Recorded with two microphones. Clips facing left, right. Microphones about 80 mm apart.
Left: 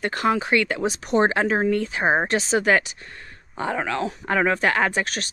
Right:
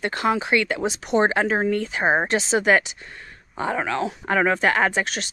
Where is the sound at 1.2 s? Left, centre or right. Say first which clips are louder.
Even; right.